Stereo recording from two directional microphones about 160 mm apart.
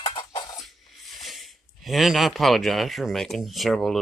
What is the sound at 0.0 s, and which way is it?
Dishes, 30° left (ahead or behind).